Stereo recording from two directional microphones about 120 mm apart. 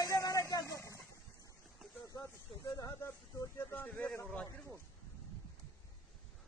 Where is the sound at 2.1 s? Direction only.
30° left (ahead or behind); by 4.5 s 10° left (ahead or behind).